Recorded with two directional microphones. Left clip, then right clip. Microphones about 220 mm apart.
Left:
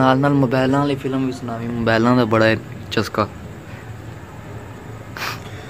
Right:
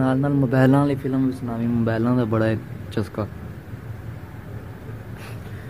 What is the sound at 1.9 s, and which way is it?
Speech, 10° left (ahead or behind).